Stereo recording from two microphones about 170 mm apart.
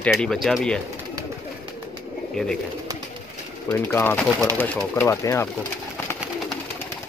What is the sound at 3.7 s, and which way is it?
Speech, 10° left (ahead or behind).